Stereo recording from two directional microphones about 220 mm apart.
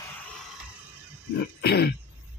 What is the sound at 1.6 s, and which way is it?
Speech, 45° left (ahead or behind).